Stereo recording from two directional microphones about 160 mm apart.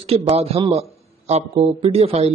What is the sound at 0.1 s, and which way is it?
Speech, 40° right (ahead or behind).